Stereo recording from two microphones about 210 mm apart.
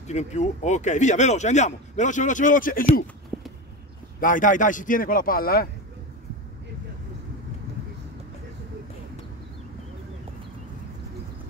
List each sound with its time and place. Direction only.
0.0 s speech: 35° left (ahead or behind)
3.3 s a sound: centre (ahead or behind)
4.2 s speech: 40° left (ahead or behind)